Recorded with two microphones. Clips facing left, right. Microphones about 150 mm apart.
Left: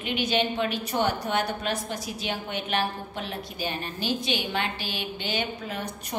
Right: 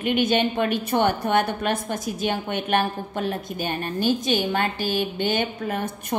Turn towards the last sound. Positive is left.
turn(degrees=-50)  # may be behind; listen again after turning